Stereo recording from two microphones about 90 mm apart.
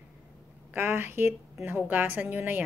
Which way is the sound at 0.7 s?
25° right (ahead or behind).